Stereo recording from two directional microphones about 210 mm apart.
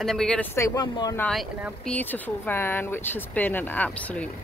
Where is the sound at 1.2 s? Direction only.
Centre (ahead or behind).